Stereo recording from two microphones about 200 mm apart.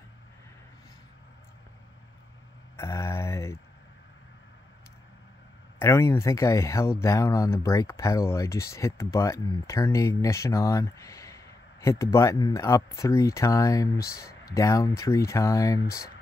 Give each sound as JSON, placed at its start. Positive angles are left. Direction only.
{"t": 2.8, "sound": "mantra", "side_deg": 15}
{"t": 5.8, "sound": "speech", "side_deg": 15}